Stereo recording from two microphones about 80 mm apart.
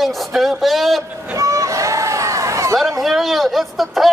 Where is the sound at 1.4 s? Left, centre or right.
Right.